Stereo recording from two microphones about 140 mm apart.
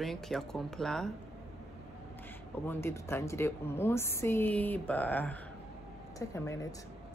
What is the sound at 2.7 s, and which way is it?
A woman's voice, 20° left (ahead or behind).